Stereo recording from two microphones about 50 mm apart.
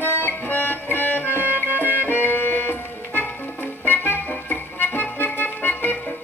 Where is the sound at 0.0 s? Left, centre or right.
Left.